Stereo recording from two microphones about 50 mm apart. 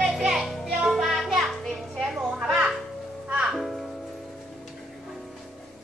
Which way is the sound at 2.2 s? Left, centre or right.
Right.